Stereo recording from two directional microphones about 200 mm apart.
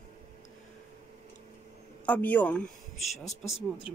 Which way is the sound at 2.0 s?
5° left (ahead or behind).